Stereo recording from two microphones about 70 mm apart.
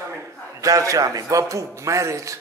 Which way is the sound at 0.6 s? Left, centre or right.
Right.